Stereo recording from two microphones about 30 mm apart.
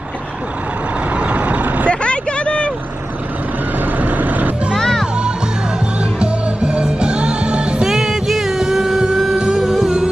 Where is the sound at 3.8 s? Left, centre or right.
Right.